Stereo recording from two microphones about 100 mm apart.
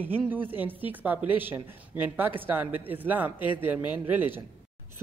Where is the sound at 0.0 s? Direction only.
20° right (ahead or behind).